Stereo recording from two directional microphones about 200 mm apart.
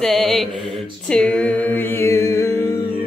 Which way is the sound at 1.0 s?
5° left (ahead or behind).